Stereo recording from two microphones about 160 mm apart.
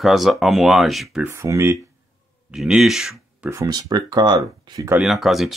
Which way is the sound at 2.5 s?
Centre (ahead or behind).